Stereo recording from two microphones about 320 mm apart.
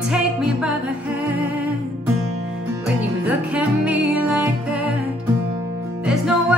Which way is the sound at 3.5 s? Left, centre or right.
Centre.